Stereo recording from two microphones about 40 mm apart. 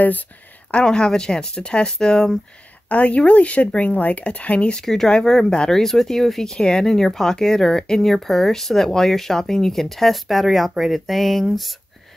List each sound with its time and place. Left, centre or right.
0.7 s speech: left
2.9 s speech: left
4.7 s speech: centre